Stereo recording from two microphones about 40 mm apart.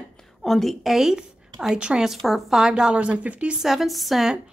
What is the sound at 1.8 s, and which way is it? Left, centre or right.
Speech, right.